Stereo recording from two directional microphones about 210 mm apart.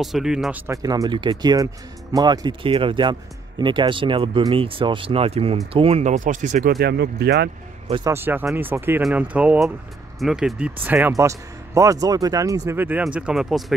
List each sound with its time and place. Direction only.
0.0 s speech: centre (ahead or behind)
0.8 s speech: 20° right (ahead or behind); by 7.5 s 50° right (ahead or behind)
7.9 s speech: 15° right (ahead or behind)